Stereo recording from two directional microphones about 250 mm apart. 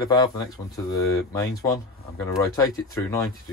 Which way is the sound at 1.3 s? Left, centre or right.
Centre.